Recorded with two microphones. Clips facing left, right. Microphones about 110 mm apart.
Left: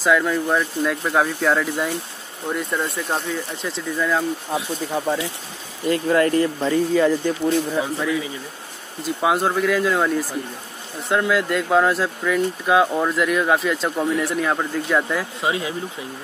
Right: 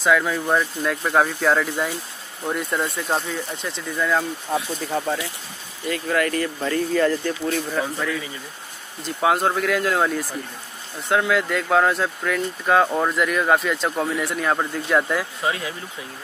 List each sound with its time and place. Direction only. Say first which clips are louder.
0.0 s speech: left 1 dB; centre (ahead or behind)
4.6 s speech: right 2 dB; 15° left (ahead or behind)
5.9 s speech: left 5 dB; 25° left (ahead or behind)
6.9 s speech: even; 10° left (ahead or behind)
7.4 s speech: left 4 dB; 20° left (ahead or behind); by 15.2 s centre (ahead or behind)
15.4 s speech: left 5 dB; 20° left (ahead or behind)